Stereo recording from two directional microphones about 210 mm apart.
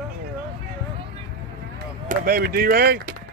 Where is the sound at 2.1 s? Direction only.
45° right (ahead or behind).